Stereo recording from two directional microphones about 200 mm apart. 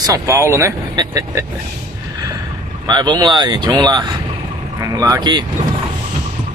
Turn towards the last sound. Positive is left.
turn(degrees=-20)  # may be behind; listen again after turning